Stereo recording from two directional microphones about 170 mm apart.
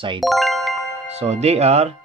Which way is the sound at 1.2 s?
40° right (ahead or behind).